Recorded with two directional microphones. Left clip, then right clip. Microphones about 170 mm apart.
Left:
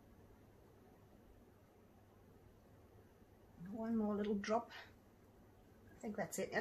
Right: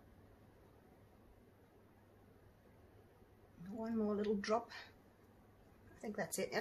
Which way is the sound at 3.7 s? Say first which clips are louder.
Right 1 dB; 20° right (ahead or behind).